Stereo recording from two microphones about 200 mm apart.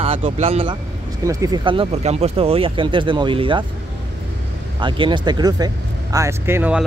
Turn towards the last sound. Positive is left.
turn(degrees=-10)  # may be behind; listen again after turning